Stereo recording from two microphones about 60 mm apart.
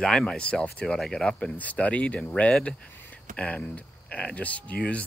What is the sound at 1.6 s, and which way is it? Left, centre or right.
Speech, left.